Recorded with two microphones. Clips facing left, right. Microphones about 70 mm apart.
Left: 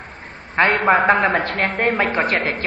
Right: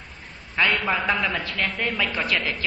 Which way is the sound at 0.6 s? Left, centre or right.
Left.